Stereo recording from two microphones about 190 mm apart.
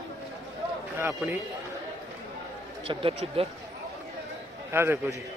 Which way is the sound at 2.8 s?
30° right (ahead or behind).